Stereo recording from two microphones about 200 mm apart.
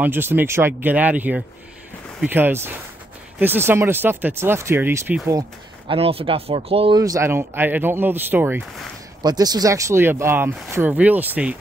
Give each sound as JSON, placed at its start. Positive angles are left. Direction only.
{"t": 0.0, "sound": "speech", "side_deg": -10}
{"t": 5.9, "sound": "speech", "side_deg": -30}
{"t": 7.0, "sound": "speech", "side_deg": -15}
{"t": 9.2, "sound": "speech", "side_deg": -20}